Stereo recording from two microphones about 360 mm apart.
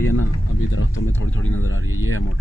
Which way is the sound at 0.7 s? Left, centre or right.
Left.